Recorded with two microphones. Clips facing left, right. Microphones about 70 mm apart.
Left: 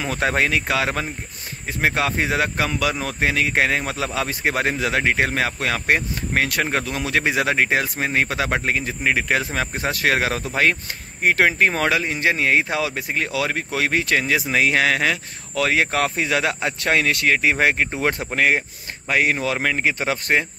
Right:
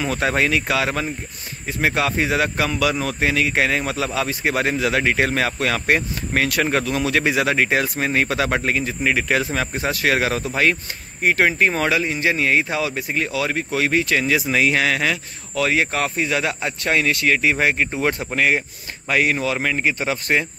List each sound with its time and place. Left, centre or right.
0.2 s speech: left
11.3 s speech: left
15.5 s speech: left
17.3 s speech: left
19.0 s speech: left
19.4 s speech: left